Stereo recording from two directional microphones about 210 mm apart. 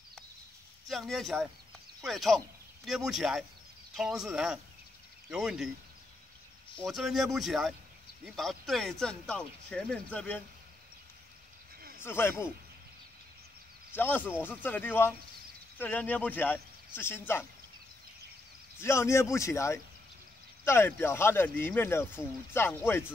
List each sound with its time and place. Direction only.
0.8 s speech: centre (ahead or behind)
6.9 s speech: centre (ahead or behind)
12.0 s speech: 10° left (ahead or behind)
13.9 s speech: 10° left (ahead or behind)
18.8 s speech: 10° left (ahead or behind)